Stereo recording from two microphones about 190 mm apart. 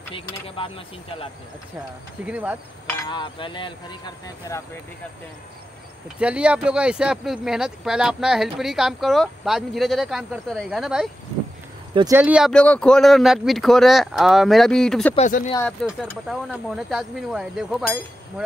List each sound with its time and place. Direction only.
0.1 s speech: 30° left (ahead or behind)
2.2 s speech: 5° right (ahead or behind)
3.1 s speech: 25° left (ahead or behind)
6.1 s speech: 5° right (ahead or behind)
12.1 s speech: 10° right (ahead or behind)
15.1 s speech: 40° left (ahead or behind)
15.6 s speech: 5° left (ahead or behind)